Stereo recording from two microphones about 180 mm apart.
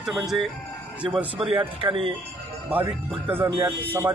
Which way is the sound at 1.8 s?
30° right (ahead or behind).